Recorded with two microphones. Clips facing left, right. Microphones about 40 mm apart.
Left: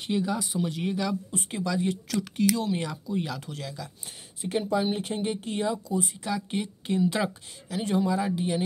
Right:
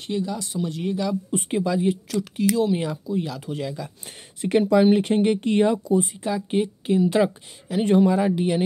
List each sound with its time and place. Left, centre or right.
0.0 s speech: centre
1.5 s speech: right
1.8 s speech: centre
3.1 s speech: centre
3.4 s speech: right
4.4 s speech: right
6.0 s speech: centre
7.6 s speech: right